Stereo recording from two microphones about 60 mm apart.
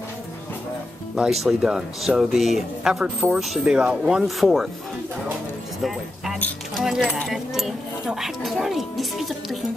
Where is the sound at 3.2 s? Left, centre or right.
Right.